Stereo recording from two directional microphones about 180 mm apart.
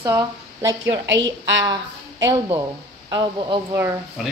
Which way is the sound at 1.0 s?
85° right.